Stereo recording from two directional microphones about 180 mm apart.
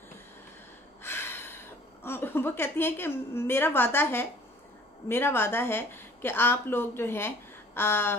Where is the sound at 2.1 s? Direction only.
10° left (ahead or behind).